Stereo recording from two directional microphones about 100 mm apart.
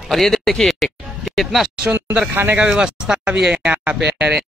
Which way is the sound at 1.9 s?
15° right (ahead or behind).